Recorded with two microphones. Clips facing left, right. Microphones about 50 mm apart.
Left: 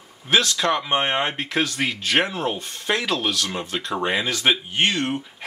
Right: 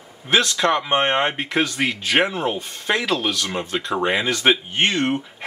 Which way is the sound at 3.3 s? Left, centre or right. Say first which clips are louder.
Right 1 dB; right.